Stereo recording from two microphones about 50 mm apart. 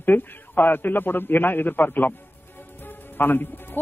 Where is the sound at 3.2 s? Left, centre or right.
Left.